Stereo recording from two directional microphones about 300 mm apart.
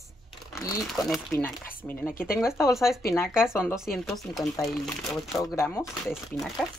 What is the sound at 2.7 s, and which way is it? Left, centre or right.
Speech, centre.